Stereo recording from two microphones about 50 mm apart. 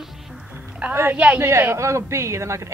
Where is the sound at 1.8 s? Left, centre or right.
Right.